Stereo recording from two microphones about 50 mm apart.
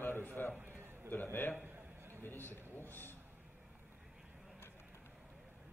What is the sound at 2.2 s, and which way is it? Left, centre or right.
A man's voice, left.